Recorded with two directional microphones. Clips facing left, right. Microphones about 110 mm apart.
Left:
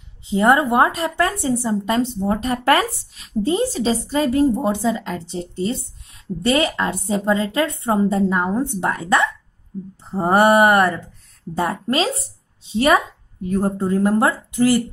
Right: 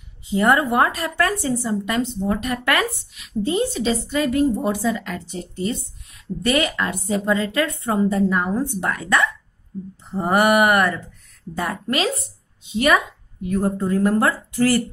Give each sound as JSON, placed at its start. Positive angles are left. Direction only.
{"t": 0.3, "sound": "speech", "side_deg": 25}
{"t": 10.1, "sound": "a sound", "side_deg": 35}
{"t": 11.5, "sound": "speech", "side_deg": 25}